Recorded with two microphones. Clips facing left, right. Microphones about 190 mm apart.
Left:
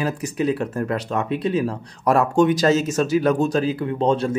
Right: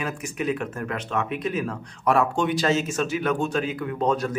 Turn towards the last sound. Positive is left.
turn(degrees=30)  # may be behind; listen again after turning